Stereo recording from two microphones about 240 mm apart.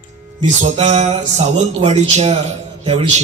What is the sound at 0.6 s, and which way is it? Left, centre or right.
A man's voice, right.